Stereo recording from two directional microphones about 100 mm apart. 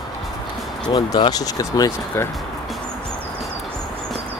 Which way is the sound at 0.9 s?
50° left (ahead or behind).